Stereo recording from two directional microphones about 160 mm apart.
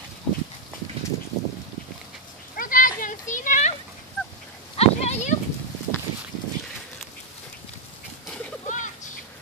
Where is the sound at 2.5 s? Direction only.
60° left (ahead or behind).